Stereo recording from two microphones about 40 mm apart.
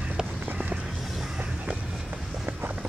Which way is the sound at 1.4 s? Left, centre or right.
Right.